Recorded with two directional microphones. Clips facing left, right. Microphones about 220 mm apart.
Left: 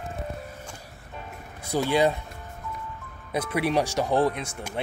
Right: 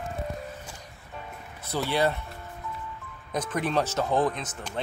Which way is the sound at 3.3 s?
10° left (ahead or behind).